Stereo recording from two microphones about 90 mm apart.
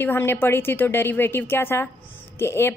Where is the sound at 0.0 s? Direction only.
25° left (ahead or behind).